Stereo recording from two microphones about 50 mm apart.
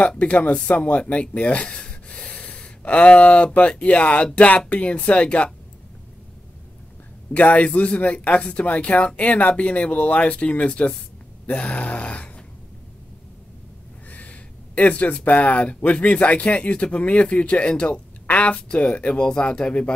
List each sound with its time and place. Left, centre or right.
0.2 s speech: left
7.3 s speech: left
14.1 s speech: left